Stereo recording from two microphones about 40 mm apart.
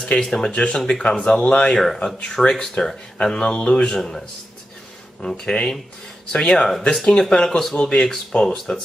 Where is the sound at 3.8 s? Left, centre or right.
Centre.